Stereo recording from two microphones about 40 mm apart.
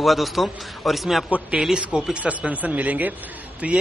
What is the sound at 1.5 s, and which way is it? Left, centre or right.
Speech, centre.